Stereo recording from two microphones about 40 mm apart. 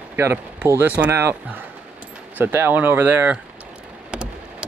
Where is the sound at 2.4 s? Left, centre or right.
Right.